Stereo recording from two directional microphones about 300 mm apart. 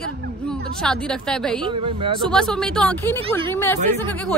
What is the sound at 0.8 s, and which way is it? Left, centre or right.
Speech, centre.